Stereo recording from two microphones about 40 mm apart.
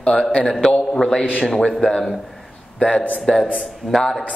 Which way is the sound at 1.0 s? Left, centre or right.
Centre.